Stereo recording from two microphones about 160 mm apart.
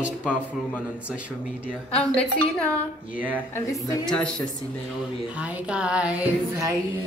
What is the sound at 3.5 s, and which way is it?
Speech, 20° left (ahead or behind).